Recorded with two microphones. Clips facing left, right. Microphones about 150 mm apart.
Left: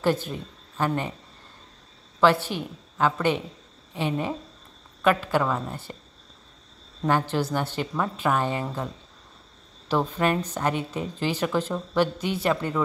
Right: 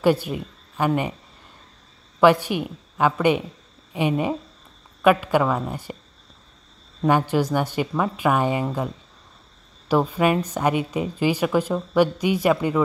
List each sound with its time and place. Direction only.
0.0 s speech: 10° right (ahead or behind)
2.1 s a woman's voice: 15° right (ahead or behind)
7.0 s a woman's voice: 15° right (ahead or behind)